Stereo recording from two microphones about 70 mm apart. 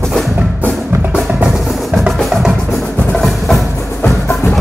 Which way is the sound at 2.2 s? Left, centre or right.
Centre.